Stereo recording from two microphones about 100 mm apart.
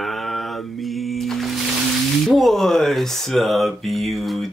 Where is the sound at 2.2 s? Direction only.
Centre (ahead or behind).